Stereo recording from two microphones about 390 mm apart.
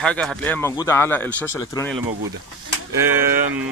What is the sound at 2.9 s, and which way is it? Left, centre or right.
Speech, centre.